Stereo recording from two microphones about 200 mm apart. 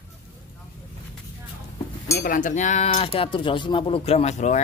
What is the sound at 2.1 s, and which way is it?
Speech, 45° left (ahead or behind).